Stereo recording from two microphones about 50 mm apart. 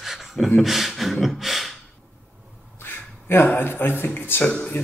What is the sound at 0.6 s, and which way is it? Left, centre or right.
Beatboxing, centre.